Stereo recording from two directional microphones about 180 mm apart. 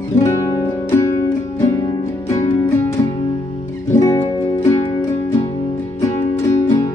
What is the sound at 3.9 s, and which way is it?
Music, 20° left (ahead or behind).